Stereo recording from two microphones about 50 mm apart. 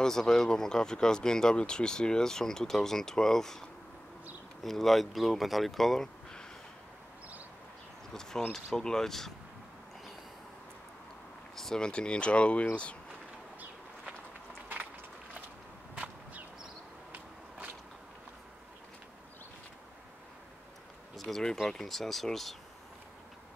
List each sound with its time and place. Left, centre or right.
0.0 s speech: centre
4.6 s speech: centre
8.1 s speech: centre
11.5 s speech: centre
21.2 s speech: centre